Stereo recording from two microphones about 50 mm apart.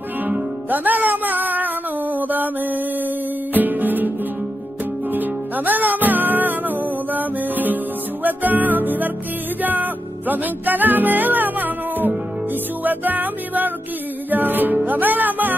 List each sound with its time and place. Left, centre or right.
0.3 s music: right
5.1 s music: right